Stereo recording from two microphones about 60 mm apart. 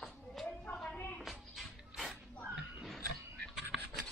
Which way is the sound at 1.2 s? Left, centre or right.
Centre.